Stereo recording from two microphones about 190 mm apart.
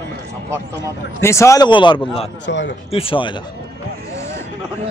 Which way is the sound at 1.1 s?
15° left (ahead or behind).